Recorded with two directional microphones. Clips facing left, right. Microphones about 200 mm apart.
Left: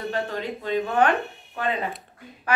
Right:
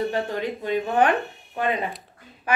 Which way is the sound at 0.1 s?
15° right (ahead or behind).